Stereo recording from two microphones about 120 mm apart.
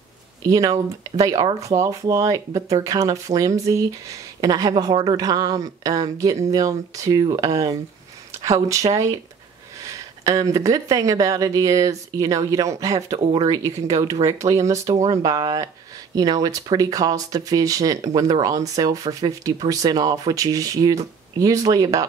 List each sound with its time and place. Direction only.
0.4 s speech: 30° right (ahead or behind)
8.9 s speech: 30° right (ahead or behind)